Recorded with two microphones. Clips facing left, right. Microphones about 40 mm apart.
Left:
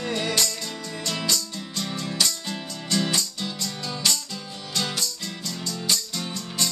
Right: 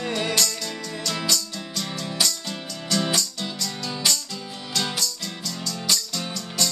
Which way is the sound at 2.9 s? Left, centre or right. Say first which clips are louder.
Right 1 dB; centre.